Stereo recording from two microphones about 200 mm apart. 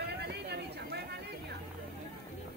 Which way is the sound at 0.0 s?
55° right (ahead or behind).